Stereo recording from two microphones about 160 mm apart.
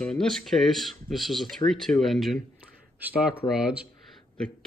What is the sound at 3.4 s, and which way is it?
Speech, 5° right (ahead or behind).